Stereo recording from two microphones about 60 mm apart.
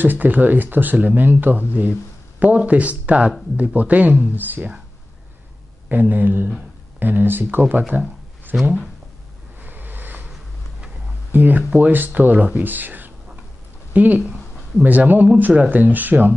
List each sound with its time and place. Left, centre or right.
0.0 s speech: right
5.9 s speech: right
9.6 s vehicle: right
11.3 s speech: right